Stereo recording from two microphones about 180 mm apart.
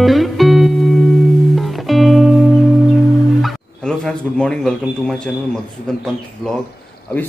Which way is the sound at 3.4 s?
5° left (ahead or behind).